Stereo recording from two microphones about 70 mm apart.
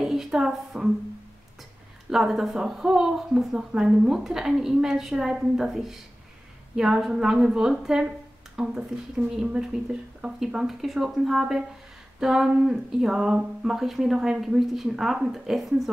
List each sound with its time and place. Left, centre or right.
0.0 s speech: centre
2.0 s a woman's voice: centre